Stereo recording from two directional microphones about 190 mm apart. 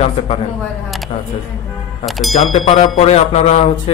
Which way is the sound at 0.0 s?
35° left (ahead or behind).